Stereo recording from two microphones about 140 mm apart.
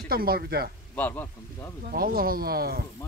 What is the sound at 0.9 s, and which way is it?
Speech, 15° left (ahead or behind).